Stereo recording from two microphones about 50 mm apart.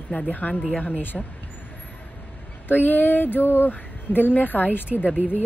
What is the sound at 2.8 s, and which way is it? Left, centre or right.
Speech, left.